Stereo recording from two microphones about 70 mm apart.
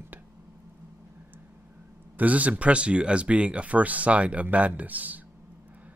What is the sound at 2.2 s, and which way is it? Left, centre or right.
Speech, right.